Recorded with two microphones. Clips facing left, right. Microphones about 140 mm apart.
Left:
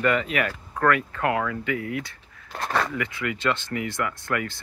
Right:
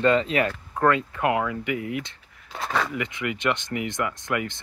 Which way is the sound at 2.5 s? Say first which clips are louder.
Left 1 dB; centre (ahead or behind).